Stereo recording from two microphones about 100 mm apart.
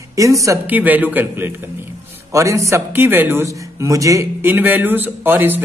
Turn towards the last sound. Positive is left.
turn(degrees=-20)  # may be behind; listen again after turning